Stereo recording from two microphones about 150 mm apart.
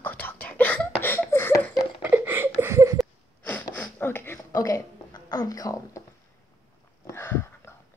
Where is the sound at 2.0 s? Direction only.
10° right (ahead or behind).